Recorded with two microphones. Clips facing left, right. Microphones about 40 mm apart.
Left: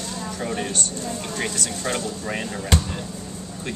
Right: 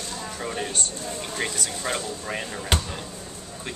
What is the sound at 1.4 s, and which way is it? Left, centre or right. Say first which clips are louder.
Speech: left 1 dB; centre.